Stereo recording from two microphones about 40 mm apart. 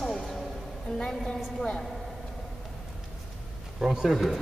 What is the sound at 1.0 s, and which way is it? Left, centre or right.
Speech, left.